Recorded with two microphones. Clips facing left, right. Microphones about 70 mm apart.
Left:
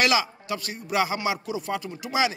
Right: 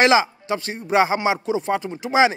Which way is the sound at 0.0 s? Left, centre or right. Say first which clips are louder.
Right 7 dB; right.